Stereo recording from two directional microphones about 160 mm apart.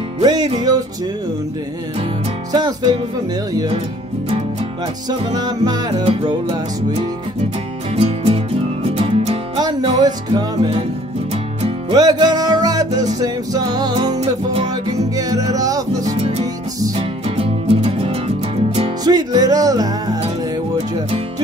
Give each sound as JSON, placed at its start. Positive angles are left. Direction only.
{"t": 0.2, "sound": "music", "side_deg": -25}
{"t": 2.5, "sound": "music", "side_deg": -25}
{"t": 5.2, "sound": "music", "side_deg": -25}
{"t": 7.9, "sound": "music", "side_deg": -35}
{"t": 15.1, "sound": "music", "side_deg": -20}
{"t": 17.4, "sound": "music", "side_deg": -40}
{"t": 19.0, "sound": "music", "side_deg": -25}